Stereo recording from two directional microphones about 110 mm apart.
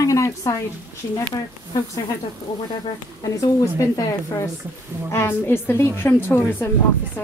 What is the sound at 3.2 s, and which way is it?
A woman's voice, 30° left (ahead or behind).